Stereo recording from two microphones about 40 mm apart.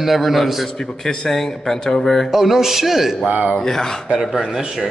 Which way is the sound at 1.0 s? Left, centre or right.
Centre.